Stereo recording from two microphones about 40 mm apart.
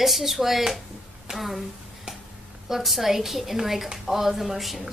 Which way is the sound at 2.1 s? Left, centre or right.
Right.